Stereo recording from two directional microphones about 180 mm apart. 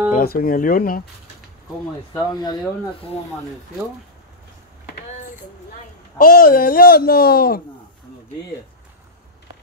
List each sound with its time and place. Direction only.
0.1 s speech: 55° left (ahead or behind)
2.1 s speech: 20° left (ahead or behind)
6.1 s speech: 55° left (ahead or behind)